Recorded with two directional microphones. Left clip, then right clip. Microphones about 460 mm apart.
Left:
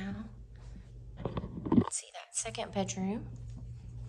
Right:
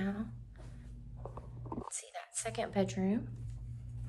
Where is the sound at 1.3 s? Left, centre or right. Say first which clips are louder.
Left 16 dB; left.